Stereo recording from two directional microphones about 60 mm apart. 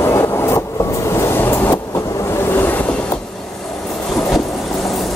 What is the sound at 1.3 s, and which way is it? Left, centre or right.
Vehicle, left.